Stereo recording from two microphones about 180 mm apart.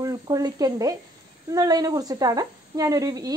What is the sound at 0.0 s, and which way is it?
A woman's voice, 20° right (ahead or behind).